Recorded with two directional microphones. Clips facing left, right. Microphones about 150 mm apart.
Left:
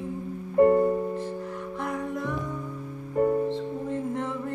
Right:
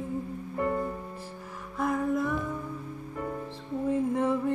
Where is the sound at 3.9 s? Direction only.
10° right (ahead or behind).